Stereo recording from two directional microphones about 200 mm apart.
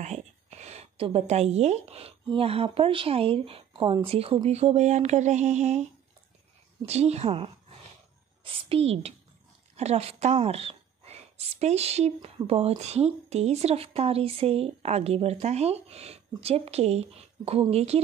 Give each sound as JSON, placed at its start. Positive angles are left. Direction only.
{"t": 0.0, "sound": "a woman's voice", "side_deg": -35}
{"t": 6.9, "sound": "a woman's voice", "side_deg": -30}